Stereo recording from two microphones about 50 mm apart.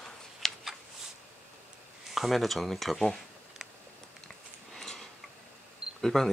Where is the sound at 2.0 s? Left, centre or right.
Centre.